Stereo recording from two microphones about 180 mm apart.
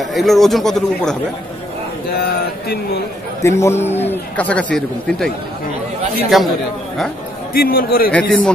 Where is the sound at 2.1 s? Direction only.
60° left (ahead or behind).